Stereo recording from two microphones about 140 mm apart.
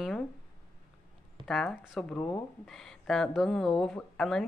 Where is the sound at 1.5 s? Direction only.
5° left (ahead or behind).